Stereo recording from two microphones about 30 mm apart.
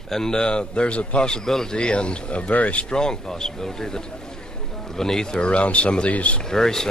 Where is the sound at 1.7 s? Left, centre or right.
Left.